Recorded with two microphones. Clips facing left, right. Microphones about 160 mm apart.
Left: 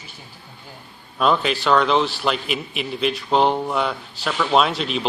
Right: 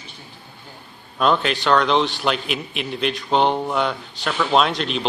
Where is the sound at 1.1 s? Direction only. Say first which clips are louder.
Even; centre (ahead or behind).